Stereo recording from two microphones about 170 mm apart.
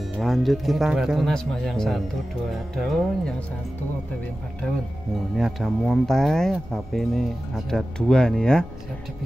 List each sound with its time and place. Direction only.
0.2 s speech: centre (ahead or behind)
5.3 s speech: centre (ahead or behind)